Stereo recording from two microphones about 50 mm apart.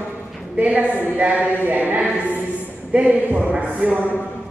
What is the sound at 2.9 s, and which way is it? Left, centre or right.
Speech, right.